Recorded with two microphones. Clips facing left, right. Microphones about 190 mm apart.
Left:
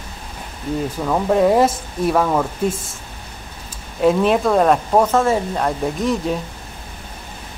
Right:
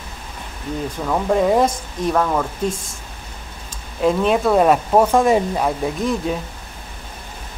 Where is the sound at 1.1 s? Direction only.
Centre (ahead or behind).